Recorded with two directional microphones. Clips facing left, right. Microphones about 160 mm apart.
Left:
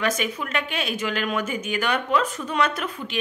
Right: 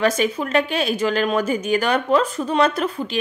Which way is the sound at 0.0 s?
35° right (ahead or behind).